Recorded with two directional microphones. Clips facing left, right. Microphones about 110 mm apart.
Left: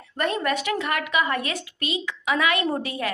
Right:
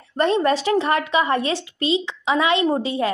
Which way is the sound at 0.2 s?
30° right (ahead or behind).